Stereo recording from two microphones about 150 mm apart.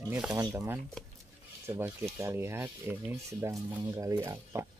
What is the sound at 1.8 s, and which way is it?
Rub, 15° right (ahead or behind).